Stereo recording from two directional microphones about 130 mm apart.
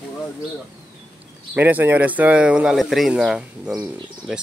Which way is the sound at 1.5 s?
15° right (ahead or behind).